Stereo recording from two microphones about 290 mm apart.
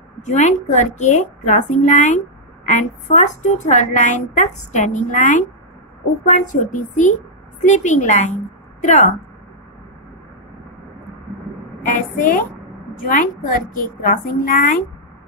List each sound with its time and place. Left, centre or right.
0.2 s a woman's voice: left
11.8 s a woman's voice: left